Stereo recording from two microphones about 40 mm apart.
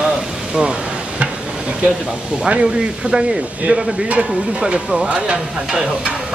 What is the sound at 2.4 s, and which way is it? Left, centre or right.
Speech, right.